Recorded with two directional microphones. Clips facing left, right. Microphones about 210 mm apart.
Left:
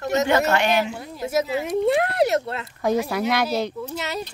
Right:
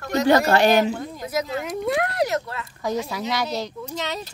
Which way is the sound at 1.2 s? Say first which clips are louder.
Left 3 dB; 25° left (ahead or behind).